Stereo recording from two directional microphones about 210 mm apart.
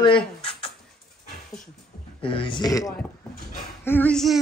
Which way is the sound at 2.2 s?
25° left (ahead or behind).